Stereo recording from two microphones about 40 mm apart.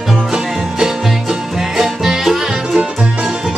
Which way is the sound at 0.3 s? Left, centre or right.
Centre.